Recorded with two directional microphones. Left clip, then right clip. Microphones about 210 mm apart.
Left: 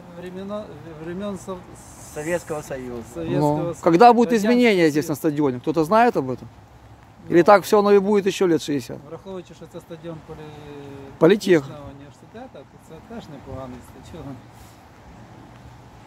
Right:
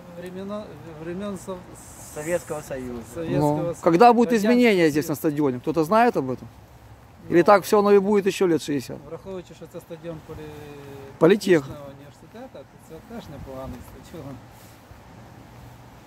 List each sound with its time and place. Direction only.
0.2 s speech: 5° right (ahead or behind)
2.1 s speech: 15° left (ahead or behind)
3.2 s speech: 5° right (ahead or behind)
9.1 s speech: 15° right (ahead or behind)
11.1 s speech: centre (ahead or behind)